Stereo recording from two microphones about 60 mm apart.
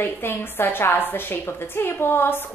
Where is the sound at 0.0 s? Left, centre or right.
Left.